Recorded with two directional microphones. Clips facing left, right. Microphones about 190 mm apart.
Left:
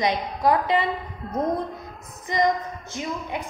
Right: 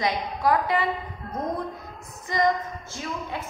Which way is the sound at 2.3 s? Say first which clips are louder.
Left 1 dB; 20° left (ahead or behind).